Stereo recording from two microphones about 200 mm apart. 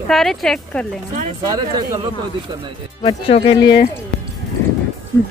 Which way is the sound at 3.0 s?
30° left (ahead or behind).